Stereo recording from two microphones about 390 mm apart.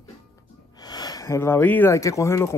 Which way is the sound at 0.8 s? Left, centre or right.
Centre.